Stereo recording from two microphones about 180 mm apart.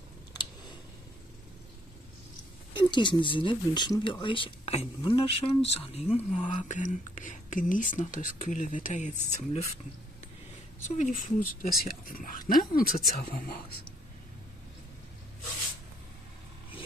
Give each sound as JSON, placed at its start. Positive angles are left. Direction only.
{"t": 2.7, "sound": "speech", "side_deg": 25}
{"t": 6.7, "sound": "speech", "side_deg": 45}
{"t": 11.0, "sound": "speech", "side_deg": 45}